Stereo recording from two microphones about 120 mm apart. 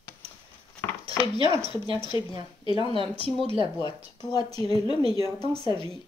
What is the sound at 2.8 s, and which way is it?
Speech, 50° right (ahead or behind).